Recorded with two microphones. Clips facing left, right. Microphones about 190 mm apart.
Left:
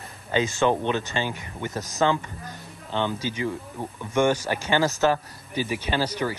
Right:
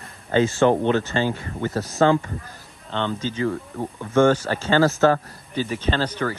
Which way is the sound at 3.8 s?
20° right (ahead or behind).